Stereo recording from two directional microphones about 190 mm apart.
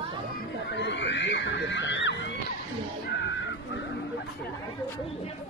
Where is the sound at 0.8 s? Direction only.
65° left (ahead or behind).